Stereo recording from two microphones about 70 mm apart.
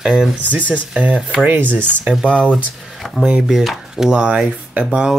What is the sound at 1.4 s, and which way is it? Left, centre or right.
Speech, right.